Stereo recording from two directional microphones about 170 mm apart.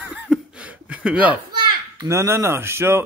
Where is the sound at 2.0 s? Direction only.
15° right (ahead or behind).